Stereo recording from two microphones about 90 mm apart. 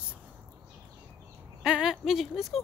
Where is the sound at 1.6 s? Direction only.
5° right (ahead or behind).